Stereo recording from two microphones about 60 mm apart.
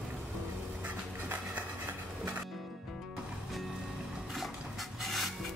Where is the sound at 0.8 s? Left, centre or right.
Right.